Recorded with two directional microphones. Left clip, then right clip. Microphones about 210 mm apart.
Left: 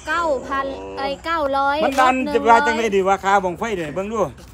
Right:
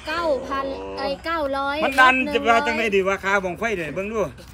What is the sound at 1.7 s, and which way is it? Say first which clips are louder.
A man's voice: right 5 dB; 40° left (ahead or behind).